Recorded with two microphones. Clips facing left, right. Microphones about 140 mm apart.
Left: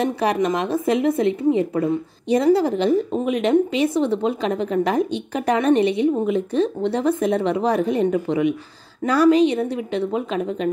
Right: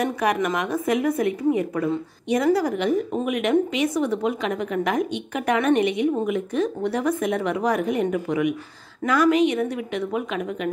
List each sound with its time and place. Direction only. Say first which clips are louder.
0.0 s a woman's voice: left 2 dB; 30° left (ahead or behind)